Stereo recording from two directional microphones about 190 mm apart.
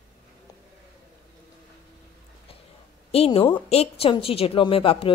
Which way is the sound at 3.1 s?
30° left (ahead or behind).